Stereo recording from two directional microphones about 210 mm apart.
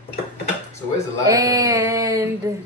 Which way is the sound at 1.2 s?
15° right (ahead or behind).